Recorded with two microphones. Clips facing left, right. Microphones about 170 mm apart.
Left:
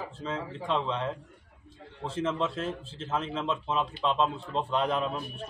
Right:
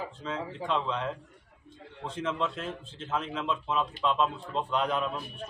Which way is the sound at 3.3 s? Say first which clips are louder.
Even; 30° left (ahead or behind).